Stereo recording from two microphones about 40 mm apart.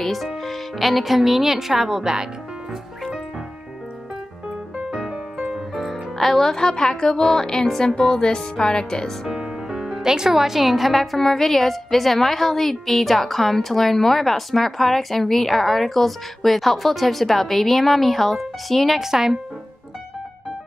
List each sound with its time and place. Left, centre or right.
0.0 s speech: centre
4.9 s music: centre
5.5 s music: centre
6.1 s speech: centre
9.7 s a woman's voice: centre
18.9 s speech: centre